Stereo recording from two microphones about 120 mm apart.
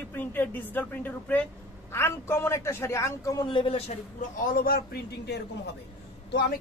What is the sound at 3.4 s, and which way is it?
Speech, 45° left (ahead or behind).